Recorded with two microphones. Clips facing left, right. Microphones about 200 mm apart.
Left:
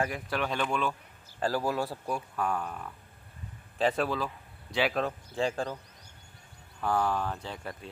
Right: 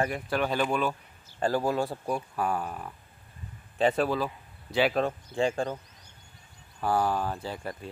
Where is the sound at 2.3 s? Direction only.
5° right (ahead or behind).